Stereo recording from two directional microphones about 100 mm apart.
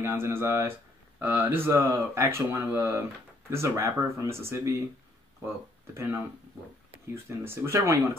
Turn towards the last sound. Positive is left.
turn(degrees=-25)  # may be behind; listen again after turning